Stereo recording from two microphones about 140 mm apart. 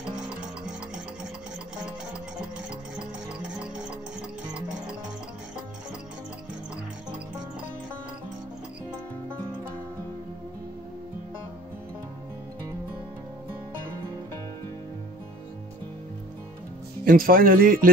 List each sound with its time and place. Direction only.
17.0 s speech: 90° right